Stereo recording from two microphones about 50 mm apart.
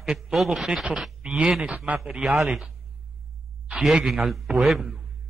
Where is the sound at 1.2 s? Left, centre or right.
Centre.